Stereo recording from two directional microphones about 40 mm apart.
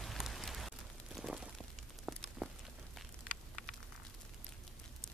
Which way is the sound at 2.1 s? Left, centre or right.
Right.